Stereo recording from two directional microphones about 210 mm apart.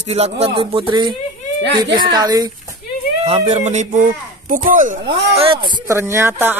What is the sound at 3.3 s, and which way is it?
Speech, 30° right (ahead or behind).